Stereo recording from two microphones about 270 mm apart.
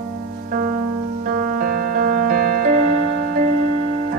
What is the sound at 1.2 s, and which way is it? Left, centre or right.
Music, right.